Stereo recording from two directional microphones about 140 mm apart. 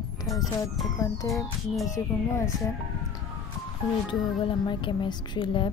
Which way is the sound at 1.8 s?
20° left (ahead or behind).